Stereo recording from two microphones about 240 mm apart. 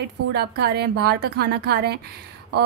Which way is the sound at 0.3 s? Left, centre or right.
Right.